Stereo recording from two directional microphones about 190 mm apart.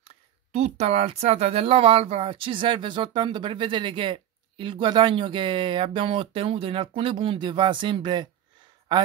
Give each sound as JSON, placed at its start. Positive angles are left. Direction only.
{"t": 0.5, "sound": "speech", "side_deg": -35}